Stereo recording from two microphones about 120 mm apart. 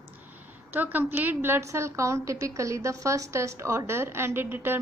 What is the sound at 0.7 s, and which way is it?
A woman's voice, 15° right (ahead or behind).